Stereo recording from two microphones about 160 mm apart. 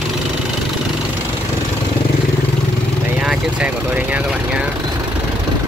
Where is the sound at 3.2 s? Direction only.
5° right (ahead or behind).